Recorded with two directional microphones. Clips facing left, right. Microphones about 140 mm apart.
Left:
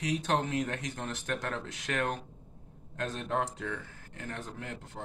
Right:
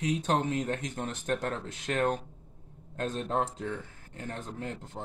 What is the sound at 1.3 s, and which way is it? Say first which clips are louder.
Speech: right 4 dB; 35° right (ahead or behind).